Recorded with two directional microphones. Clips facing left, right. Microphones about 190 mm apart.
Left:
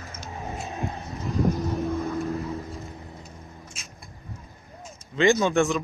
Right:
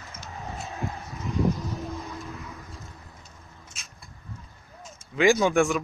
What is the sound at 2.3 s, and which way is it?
Vehicle, 35° left (ahead or behind).